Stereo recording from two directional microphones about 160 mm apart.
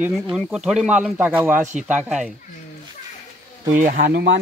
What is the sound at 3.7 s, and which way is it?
Speech, 60° right (ahead or behind).